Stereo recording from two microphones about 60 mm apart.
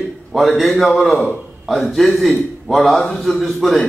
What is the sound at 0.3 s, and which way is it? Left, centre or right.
A man's voice, centre.